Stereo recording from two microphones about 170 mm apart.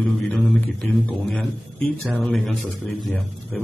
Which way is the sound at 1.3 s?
Centre (ahead or behind).